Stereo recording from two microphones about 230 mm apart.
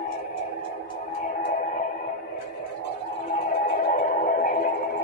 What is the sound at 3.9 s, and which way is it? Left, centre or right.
Music, left.